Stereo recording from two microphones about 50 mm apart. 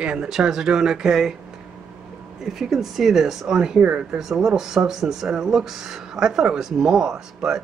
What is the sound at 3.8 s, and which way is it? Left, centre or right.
Speech, right.